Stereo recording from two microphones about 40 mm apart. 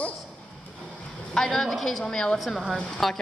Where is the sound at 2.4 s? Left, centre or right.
Centre.